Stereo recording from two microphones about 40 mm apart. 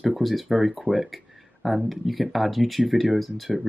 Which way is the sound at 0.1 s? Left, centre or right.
Centre.